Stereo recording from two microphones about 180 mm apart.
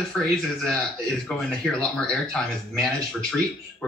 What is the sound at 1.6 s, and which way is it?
Speech, 5° left (ahead or behind).